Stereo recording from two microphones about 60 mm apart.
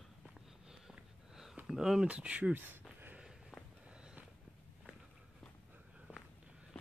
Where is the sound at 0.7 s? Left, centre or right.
Centre.